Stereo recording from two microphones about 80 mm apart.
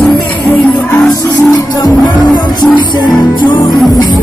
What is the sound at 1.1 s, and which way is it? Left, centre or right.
Music, left.